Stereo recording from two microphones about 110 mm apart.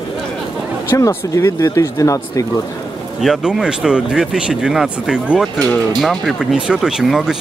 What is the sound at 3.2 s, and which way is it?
A man's voice, 5° right (ahead or behind).